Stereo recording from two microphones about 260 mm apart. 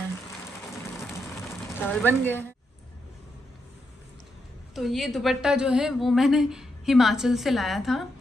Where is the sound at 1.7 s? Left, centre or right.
Centre.